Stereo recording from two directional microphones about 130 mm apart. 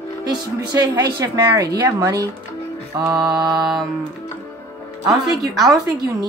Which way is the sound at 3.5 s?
Centre (ahead or behind).